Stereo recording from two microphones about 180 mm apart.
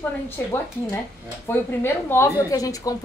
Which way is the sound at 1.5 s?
10° left (ahead or behind).